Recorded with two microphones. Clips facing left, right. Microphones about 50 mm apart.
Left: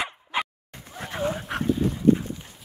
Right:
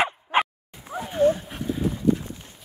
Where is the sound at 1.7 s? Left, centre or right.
Centre.